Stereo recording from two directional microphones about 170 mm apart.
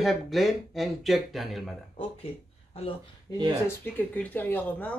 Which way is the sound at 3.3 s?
20° left (ahead or behind).